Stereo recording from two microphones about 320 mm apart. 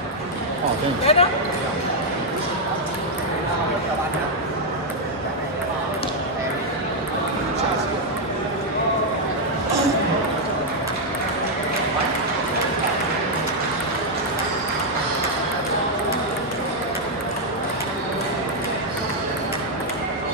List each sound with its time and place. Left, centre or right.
1.1 s speech: centre